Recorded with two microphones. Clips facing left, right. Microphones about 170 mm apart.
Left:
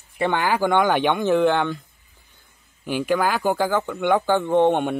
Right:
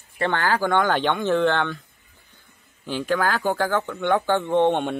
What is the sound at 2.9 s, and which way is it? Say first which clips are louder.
Speech: left 2 dB; 10° left (ahead or behind).